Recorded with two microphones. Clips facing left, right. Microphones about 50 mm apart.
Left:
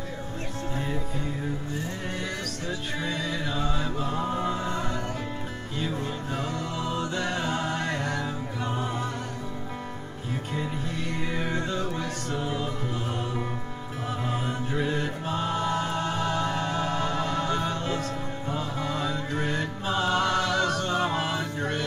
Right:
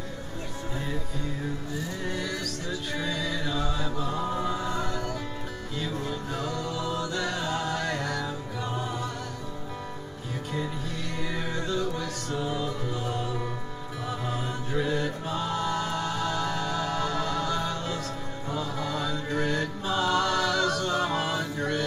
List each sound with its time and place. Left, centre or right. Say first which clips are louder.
3.0 s music: even; left
11.1 s music: left 2 dB; left